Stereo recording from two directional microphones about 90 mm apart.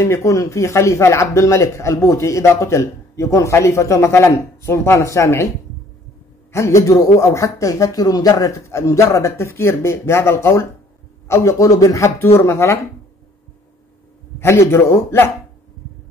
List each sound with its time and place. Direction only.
0.0 s speech: 35° left (ahead or behind)
6.5 s a man's voice: 35° left (ahead or behind)
14.4 s a man's voice: 30° left (ahead or behind)